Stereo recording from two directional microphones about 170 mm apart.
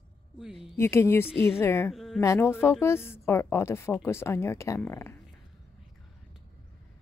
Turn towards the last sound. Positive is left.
turn(degrees=15)  # may be behind; listen again after turning